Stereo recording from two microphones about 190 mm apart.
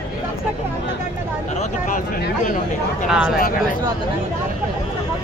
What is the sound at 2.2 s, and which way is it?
Speech, 45° left (ahead or behind).